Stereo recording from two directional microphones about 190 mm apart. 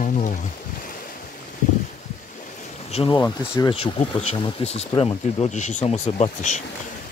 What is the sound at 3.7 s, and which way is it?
Speech, 30° left (ahead or behind).